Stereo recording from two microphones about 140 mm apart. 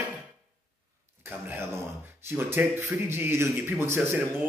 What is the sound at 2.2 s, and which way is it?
Speech, 15° right (ahead or behind).